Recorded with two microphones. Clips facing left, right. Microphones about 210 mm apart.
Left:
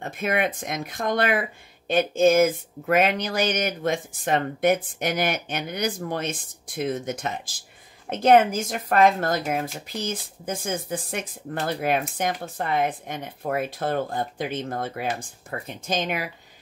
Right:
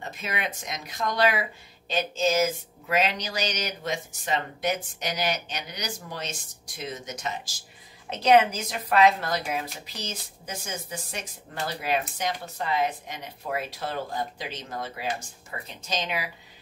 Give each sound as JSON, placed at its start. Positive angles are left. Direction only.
{"t": 0.0, "sound": "speech", "side_deg": 55}